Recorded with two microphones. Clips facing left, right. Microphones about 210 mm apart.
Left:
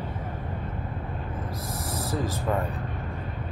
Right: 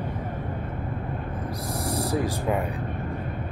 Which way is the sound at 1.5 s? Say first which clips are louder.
Right 4 dB; 15° right (ahead or behind).